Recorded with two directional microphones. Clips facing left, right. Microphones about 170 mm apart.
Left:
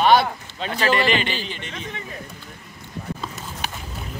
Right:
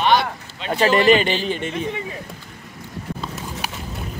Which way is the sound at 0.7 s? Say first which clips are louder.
Right 6 dB; 40° right (ahead or behind).